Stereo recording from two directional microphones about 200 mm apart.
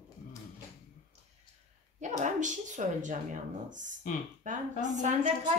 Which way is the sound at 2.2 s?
40° right (ahead or behind).